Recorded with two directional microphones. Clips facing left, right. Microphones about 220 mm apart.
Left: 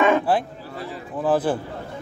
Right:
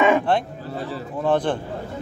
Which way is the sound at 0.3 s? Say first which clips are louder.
Even; 5° left (ahead or behind).